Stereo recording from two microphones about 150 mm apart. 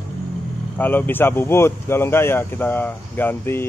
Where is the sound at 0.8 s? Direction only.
15° left (ahead or behind).